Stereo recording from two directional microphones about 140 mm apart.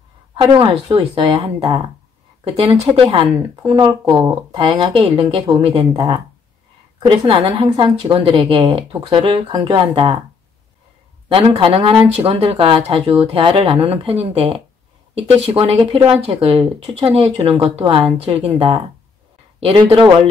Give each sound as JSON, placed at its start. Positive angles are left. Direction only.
{"t": 0.3, "sound": "a woman's voice", "side_deg": -35}
{"t": 11.2, "sound": "a woman's voice", "side_deg": -40}